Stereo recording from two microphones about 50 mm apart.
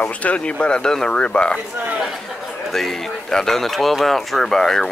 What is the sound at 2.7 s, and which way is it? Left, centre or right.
Speech, centre.